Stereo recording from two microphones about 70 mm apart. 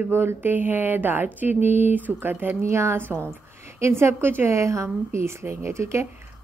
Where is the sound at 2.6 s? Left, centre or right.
Right.